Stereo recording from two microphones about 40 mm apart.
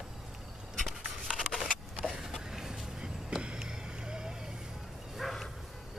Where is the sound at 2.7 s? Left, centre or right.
Right.